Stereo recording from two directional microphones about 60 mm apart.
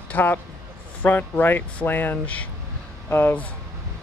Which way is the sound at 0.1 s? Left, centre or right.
Left.